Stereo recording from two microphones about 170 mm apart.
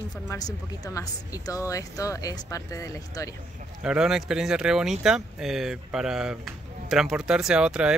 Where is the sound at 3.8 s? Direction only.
5° right (ahead or behind).